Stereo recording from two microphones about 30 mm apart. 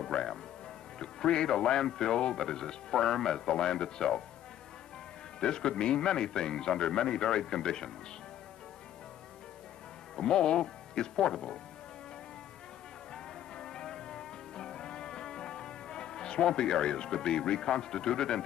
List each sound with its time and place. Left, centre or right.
0.0 s music: left
0.9 s speech: left
5.4 s speech: left
10.1 s speech: left
13.1 s music: left
17.5 s speech: left